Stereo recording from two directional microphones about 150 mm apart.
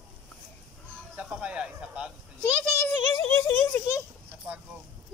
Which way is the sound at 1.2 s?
5° right (ahead or behind).